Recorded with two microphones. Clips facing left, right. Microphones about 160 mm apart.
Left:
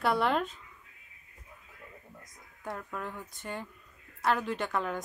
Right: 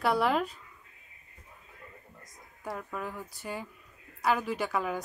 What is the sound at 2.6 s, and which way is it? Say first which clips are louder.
A woman's voice: right 1 dB; centre (ahead or behind).